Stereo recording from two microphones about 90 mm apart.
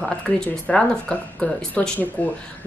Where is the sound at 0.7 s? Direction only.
10° left (ahead or behind).